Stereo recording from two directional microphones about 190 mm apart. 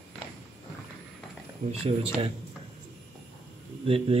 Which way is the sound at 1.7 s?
30° right (ahead or behind).